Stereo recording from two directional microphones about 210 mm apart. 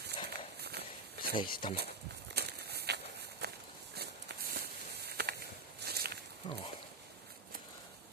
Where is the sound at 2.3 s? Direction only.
50° right (ahead or behind).